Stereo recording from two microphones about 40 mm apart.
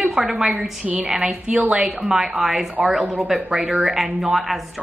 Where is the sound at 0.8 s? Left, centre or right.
Right.